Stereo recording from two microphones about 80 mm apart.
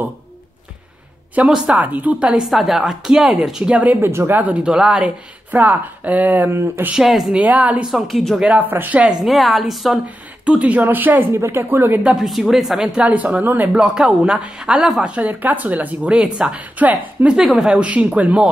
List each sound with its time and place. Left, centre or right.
1.3 s a woman's voice: centre
2.2 s a woman's voice: centre; by 6.9 s right
6.9 s a woman's voice: centre
7.3 s a woman's voice: centre
7.9 s a woman's voice: centre
8.4 s speech: centre
9.2 s a woman's voice: centre
10.0 s speech: centre
12.0 s a woman's voice: centre
12.3 s a woman's voice: centre; by 13.7 s right
13.7 s a woman's voice: centre
15.1 s a woman's voice: right